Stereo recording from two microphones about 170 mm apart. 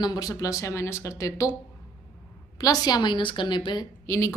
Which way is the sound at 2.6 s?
20° left (ahead or behind).